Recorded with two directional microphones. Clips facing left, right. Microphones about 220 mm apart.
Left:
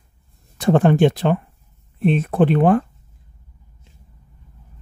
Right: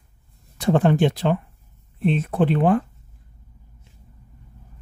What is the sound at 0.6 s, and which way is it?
Speech, 50° left (ahead or behind).